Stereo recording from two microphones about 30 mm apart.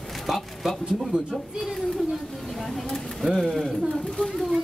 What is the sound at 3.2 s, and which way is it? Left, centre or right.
Speech, centre.